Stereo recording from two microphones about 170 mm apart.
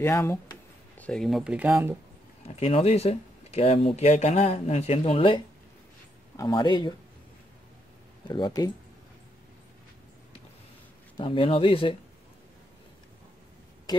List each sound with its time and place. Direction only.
0.0 s speech: 15° left (ahead or behind); by 2.0 s 15° right (ahead or behind)
2.4 s speech: 35° left (ahead or behind)
8.3 s speech: 25° left (ahead or behind)
11.1 s speech: 30° left (ahead or behind)